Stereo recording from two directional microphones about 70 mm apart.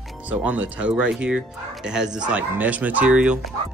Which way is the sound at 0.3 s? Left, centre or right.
Right.